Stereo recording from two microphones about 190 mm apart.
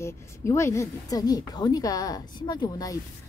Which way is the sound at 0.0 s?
15° left (ahead or behind).